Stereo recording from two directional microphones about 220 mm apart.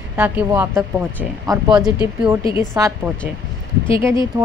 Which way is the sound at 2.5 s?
10° right (ahead or behind).